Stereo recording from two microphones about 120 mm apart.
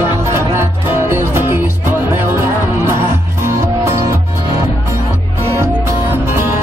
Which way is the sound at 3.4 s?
25° right (ahead or behind).